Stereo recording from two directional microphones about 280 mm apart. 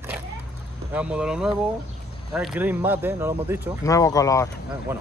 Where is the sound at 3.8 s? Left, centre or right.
Centre.